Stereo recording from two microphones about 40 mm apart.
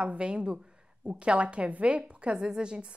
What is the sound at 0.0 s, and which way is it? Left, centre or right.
A woman's voice, right.